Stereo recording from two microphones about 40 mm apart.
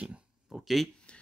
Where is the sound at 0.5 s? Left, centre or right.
Centre.